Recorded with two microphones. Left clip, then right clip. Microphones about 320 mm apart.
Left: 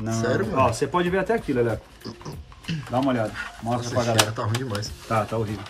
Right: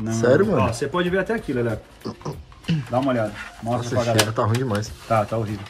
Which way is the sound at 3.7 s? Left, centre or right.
Centre.